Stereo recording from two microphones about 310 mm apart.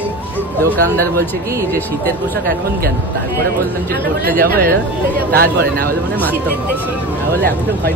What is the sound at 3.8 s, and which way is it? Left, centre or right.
Speech, right.